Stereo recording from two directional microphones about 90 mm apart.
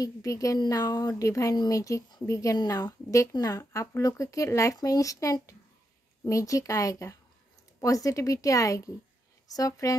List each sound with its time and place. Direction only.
0.0 s a woman's voice: 40° left (ahead or behind)